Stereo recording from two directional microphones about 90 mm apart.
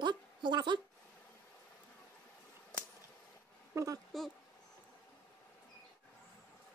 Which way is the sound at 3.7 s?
35° right (ahead or behind).